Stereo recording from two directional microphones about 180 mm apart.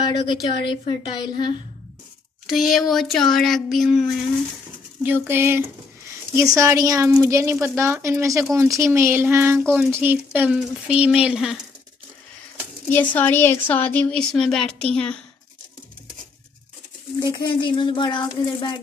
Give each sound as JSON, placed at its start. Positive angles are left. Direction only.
{"t": 0.0, "sound": "speech", "side_deg": 25}
{"t": 2.4, "sound": "speech", "side_deg": 0}
{"t": 5.0, "sound": "speech", "side_deg": -10}
{"t": 12.9, "sound": "speech", "side_deg": 10}
{"t": 17.2, "sound": "speech", "side_deg": 20}